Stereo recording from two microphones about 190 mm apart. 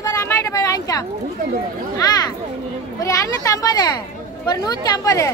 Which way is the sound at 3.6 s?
20° left (ahead or behind).